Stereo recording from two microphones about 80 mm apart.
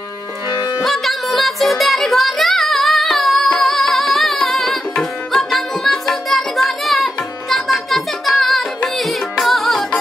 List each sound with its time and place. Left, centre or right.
0.5 s music: left
0.8 s music: centre